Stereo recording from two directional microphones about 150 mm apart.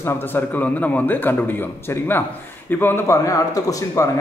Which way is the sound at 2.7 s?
15° left (ahead or behind).